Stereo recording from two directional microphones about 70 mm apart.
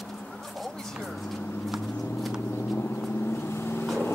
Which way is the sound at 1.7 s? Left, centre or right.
Centre.